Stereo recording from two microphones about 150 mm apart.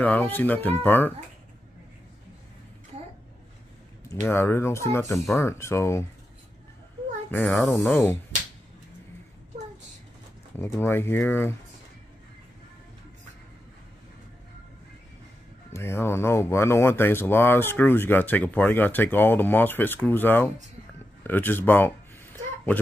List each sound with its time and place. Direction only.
0.0 s speech: 10° left (ahead or behind)
4.1 s speech: 15° left (ahead or behind)
7.2 s speech: 10° left (ahead or behind)
10.6 s speech: 15° left (ahead or behind)
15.7 s speech: 15° left (ahead or behind)
21.2 s a sound: 15° left (ahead or behind)